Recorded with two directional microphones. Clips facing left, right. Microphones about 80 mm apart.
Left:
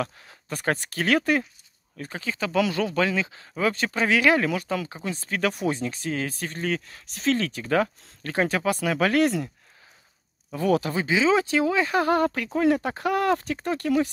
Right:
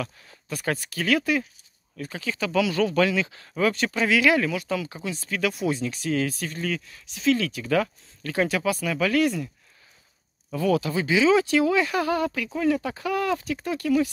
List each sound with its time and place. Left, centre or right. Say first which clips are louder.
0.0 s speech: left 3 dB; left
2.0 s speech: even; left
10.5 s speech: even; left